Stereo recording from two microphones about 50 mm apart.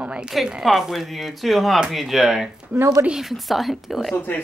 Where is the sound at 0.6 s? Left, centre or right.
Centre.